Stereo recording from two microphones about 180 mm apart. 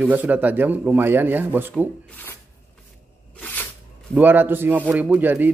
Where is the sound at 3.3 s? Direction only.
10° left (ahead or behind).